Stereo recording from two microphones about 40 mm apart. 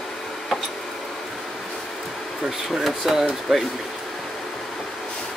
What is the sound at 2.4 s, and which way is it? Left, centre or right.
Speech, centre.